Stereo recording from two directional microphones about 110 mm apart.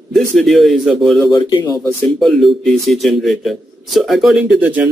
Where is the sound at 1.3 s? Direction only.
40° left (ahead or behind).